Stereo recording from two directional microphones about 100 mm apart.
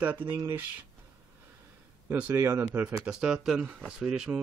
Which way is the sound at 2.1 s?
20° right (ahead or behind).